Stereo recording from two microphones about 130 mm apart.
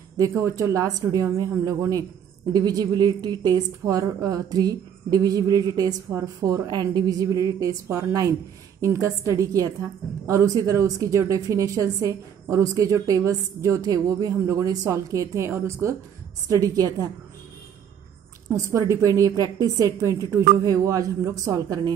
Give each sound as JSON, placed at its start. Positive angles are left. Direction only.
{"t": 0.3, "sound": "a woman's voice", "side_deg": -20}
{"t": 18.5, "sound": "a woman's voice", "side_deg": -20}